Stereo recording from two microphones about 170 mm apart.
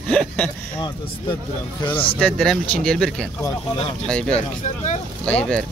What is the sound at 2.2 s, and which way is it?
Speech, centre (ahead or behind).